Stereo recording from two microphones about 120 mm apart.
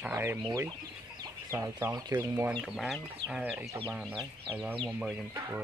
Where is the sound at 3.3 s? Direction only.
10° right (ahead or behind).